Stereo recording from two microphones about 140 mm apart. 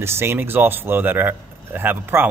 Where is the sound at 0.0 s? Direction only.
15° right (ahead or behind).